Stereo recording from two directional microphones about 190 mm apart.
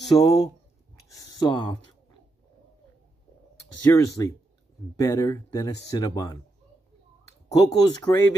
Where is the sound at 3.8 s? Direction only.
15° left (ahead or behind).